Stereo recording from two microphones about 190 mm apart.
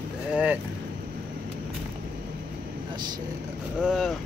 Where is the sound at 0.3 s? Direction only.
5° right (ahead or behind).